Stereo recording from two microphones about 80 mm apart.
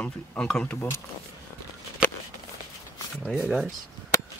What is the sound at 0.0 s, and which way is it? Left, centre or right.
Speech, centre.